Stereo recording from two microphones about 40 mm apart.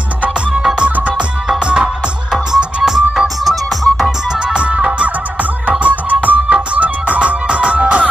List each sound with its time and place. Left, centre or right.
2.5 s music: centre
4.6 s music: right